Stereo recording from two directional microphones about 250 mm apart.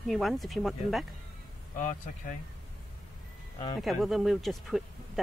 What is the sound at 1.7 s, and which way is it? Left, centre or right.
Speech, left.